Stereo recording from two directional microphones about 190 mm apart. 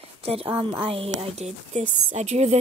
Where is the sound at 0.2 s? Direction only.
30° right (ahead or behind).